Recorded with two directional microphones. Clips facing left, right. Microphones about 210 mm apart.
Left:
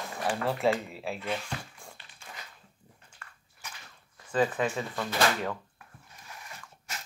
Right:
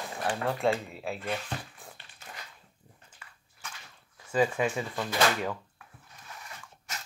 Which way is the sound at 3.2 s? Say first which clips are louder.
Left 3 dB; 5° right (ahead or behind).